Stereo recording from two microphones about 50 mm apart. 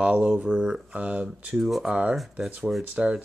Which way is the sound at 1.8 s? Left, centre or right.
Right.